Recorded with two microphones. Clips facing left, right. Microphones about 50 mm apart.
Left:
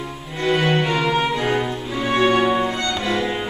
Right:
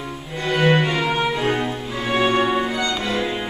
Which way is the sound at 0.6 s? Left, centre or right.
Centre.